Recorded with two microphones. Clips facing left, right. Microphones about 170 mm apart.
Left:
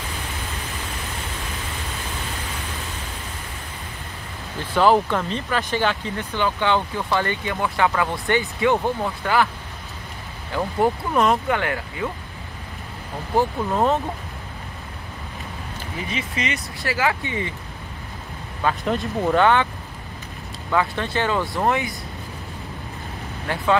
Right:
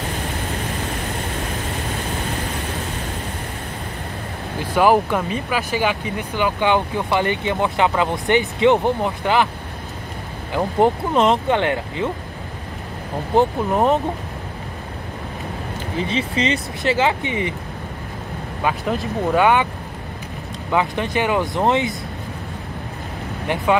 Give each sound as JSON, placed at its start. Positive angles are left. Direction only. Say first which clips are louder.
{"t": 4.7, "sound": "speech", "louder": "right 2 dB", "side_deg": -10}
{"t": 10.5, "sound": "speech", "louder": "right 4 dB", "side_deg": -20}
{"t": 13.3, "sound": "speech", "louder": "right 4 dB", "side_deg": -20}
{"t": 16.1, "sound": "speech", "louder": "right 6 dB", "side_deg": -30}
{"t": 18.9, "sound": "speech", "louder": "even", "side_deg": 0}
{"t": 19.4, "sound": "speech", "louder": "right 2 dB", "side_deg": -15}
{"t": 20.7, "sound": "speech", "louder": "right 2 dB", "side_deg": -15}
{"t": 23.4, "sound": "speech", "louder": "right 2 dB", "side_deg": -20}